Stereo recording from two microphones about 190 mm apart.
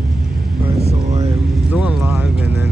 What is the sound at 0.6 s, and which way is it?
Vehicle, 35° right (ahead or behind).